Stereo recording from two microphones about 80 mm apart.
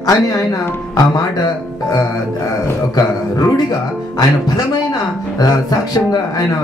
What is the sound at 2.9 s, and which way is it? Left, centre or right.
A man's voice, left.